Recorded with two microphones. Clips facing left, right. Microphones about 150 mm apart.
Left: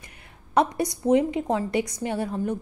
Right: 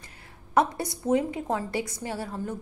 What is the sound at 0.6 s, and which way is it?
A woman's voice, 20° left (ahead or behind).